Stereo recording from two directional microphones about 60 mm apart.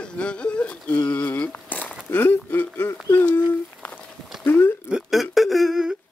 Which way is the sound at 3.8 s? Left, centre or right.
Left.